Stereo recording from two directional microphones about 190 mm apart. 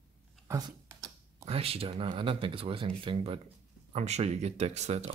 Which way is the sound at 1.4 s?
30° right (ahead or behind).